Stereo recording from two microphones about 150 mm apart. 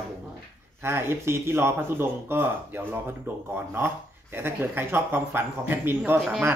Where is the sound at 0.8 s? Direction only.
15° right (ahead or behind).